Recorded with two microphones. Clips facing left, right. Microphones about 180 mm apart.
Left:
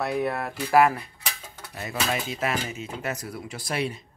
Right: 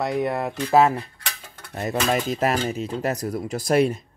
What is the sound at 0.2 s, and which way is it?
Speech, 15° right (ahead or behind).